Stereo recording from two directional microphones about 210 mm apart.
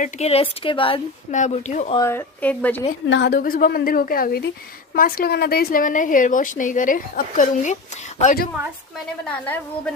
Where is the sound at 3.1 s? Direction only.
50° left (ahead or behind).